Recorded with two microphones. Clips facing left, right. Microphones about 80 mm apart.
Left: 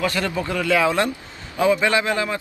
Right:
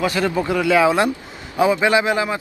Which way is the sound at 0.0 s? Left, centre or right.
Centre.